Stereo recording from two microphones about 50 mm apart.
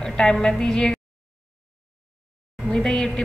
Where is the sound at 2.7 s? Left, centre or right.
Centre.